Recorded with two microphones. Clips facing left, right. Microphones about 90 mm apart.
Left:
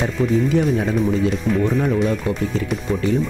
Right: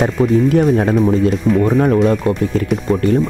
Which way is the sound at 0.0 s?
55° right (ahead or behind).